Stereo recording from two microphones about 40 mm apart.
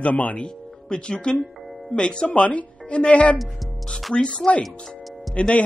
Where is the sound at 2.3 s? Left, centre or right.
Left.